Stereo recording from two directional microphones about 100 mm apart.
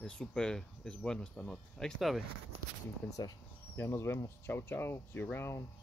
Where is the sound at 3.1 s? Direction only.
40° left (ahead or behind).